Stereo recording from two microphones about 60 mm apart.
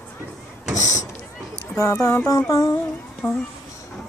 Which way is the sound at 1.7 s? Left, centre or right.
Left.